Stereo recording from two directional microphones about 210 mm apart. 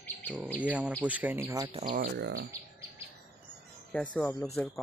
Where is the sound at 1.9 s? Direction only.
50° right (ahead or behind).